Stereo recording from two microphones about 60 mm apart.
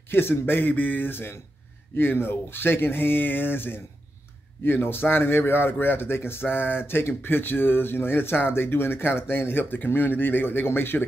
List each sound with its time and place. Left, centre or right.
0.1 s a man's voice: left